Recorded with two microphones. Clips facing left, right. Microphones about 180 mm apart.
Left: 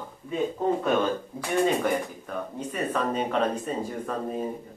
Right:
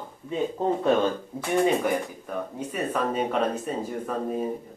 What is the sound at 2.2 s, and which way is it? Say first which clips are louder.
Speech: right 1 dB; 10° right (ahead or behind).